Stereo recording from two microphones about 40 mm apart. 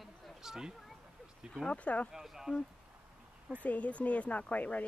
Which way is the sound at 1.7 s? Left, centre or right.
Left.